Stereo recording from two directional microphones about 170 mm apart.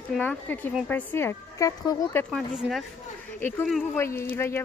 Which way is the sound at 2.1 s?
10° left (ahead or behind).